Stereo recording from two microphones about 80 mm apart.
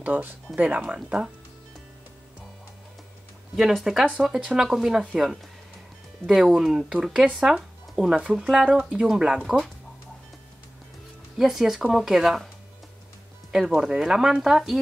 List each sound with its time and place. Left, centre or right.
0.0 s speech: right
3.5 s speech: centre
6.2 s speech: centre
11.3 s speech: centre
13.5 s speech: centre